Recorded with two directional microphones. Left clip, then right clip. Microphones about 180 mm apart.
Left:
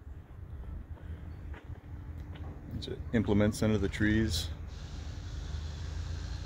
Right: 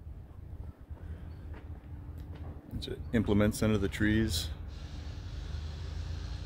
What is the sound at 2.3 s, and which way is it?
Speech, 5° right (ahead or behind).